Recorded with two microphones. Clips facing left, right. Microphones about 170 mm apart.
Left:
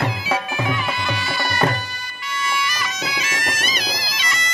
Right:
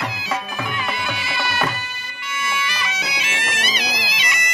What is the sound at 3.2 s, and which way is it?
Bagpipes, 40° left (ahead or behind).